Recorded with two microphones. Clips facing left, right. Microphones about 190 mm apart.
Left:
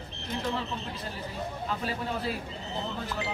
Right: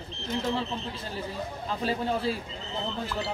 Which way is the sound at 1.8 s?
30° right (ahead or behind).